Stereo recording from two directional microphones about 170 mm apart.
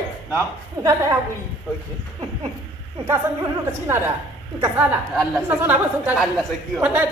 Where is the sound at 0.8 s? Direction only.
20° right (ahead or behind).